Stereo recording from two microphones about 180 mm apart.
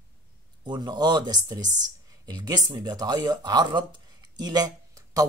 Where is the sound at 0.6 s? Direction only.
25° right (ahead or behind).